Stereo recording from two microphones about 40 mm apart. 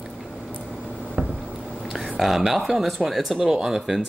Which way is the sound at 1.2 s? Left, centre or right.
Right.